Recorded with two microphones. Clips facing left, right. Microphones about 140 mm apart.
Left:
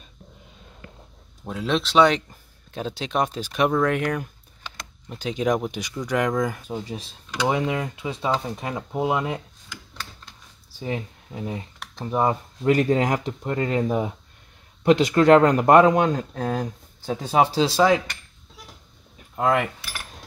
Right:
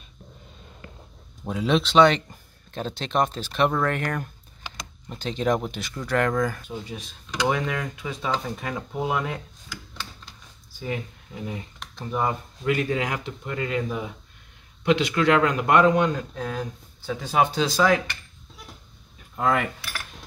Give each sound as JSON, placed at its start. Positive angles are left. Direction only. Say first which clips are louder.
{"t": 1.4, "sound": "speech", "louder": "right 2 dB", "side_deg": 0}
{"t": 6.7, "sound": "speech", "louder": "left 3 dB", "side_deg": 35}
{"t": 7.4, "sound": "speech", "louder": "left 2 dB", "side_deg": 20}
{"t": 11.3, "sound": "speech", "louder": "left 3 dB", "side_deg": 30}
{"t": 12.6, "sound": "speech", "louder": "left 5 dB", "side_deg": 40}
{"t": 17.2, "sound": "speech", "louder": "left 3 dB", "side_deg": 30}
{"t": 19.3, "sound": "cutlery", "louder": "left 2 dB", "side_deg": 15}